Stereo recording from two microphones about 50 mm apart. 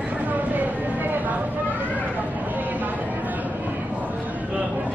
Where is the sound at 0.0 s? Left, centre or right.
Right.